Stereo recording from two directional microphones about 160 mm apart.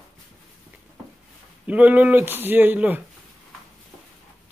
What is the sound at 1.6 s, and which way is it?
Speech, 10° right (ahead or behind).